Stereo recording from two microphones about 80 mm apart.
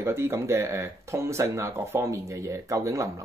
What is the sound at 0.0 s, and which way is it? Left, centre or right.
Speech, right.